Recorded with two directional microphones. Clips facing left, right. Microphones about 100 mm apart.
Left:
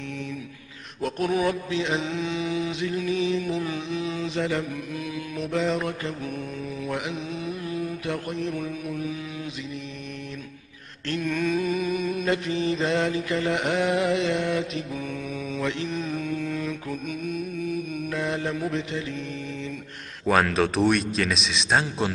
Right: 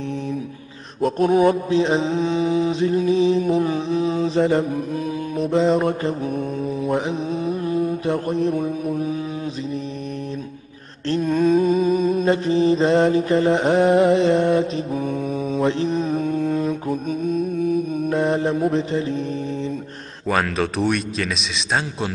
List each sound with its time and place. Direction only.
1.0 s mantra: 35° right (ahead or behind)
11.1 s mantra: 30° right (ahead or behind)
20.2 s speech: centre (ahead or behind)